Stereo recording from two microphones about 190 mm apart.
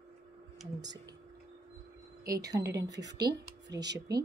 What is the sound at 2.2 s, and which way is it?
Speech, 20° right (ahead or behind).